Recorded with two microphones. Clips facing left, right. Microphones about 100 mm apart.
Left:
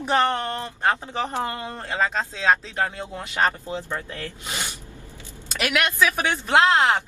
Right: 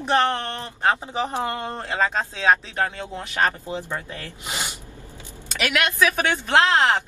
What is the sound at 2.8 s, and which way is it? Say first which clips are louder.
Speech: right 1 dB; 10° left (ahead or behind).